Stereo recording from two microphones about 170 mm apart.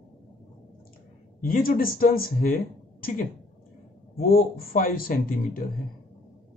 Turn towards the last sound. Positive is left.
turn(degrees=55)  # may be behind; listen again after turning